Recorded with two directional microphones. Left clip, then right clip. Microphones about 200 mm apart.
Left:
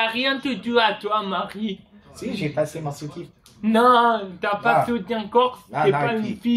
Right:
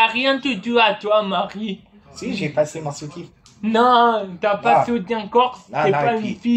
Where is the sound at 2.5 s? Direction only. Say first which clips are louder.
Right 5 dB; 15° left (ahead or behind).